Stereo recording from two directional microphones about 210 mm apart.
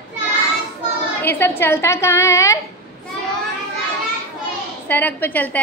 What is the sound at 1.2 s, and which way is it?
A woman's voice, 10° left (ahead or behind).